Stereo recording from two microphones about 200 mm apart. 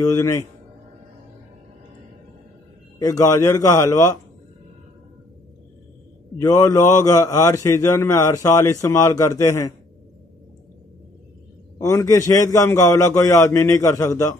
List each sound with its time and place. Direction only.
0.0 s a man's voice: 15° left (ahead or behind)
3.0 s a man's voice: 15° left (ahead or behind)
6.3 s a man's voice: 15° left (ahead or behind)
11.8 s a man's voice: 15° left (ahead or behind)